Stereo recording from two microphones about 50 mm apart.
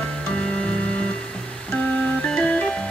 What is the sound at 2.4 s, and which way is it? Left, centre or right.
Music, left.